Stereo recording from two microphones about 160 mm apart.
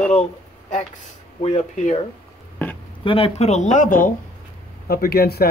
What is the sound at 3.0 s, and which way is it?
Speech, 35° left (ahead or behind).